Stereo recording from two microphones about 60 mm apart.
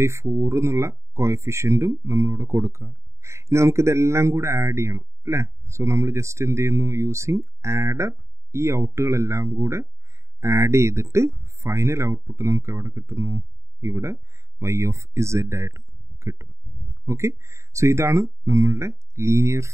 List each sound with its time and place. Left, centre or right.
0.0 s speech: right